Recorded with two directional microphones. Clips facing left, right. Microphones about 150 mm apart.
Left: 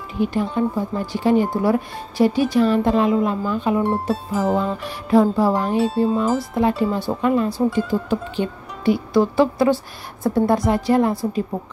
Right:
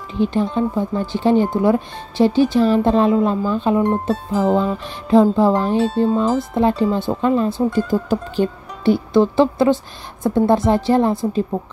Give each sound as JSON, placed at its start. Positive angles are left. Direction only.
{"t": 0.2, "sound": "speech", "side_deg": -25}
{"t": 3.8, "sound": "music", "side_deg": 5}
{"t": 5.1, "sound": "speech", "side_deg": -20}
{"t": 5.9, "sound": "music", "side_deg": 5}
{"t": 6.3, "sound": "speech", "side_deg": -25}
{"t": 7.7, "sound": "speech", "side_deg": -40}
{"t": 8.8, "sound": "speech", "side_deg": -25}